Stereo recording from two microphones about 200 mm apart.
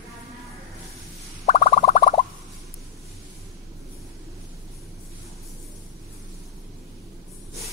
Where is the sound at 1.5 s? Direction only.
35° left (ahead or behind).